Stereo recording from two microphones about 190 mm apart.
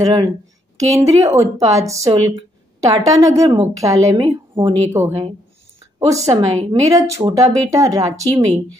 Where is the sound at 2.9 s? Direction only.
20° right (ahead or behind).